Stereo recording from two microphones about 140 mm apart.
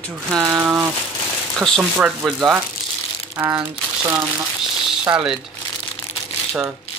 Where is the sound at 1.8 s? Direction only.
10° right (ahead or behind).